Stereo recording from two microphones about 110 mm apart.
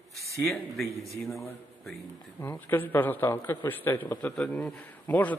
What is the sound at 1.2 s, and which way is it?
A man's voice, 25° left (ahead or behind).